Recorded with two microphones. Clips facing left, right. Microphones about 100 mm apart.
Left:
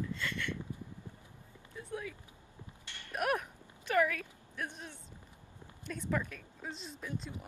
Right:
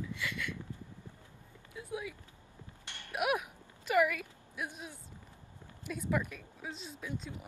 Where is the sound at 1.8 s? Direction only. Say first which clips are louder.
Right 1 dB; 10° right (ahead or behind).